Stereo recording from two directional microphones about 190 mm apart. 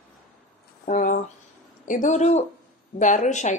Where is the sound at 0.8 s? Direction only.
40° left (ahead or behind).